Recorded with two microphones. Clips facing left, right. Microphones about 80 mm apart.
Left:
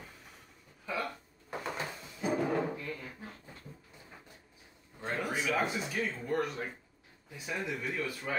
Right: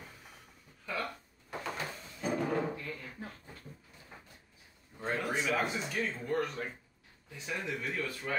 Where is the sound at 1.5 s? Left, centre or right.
Left.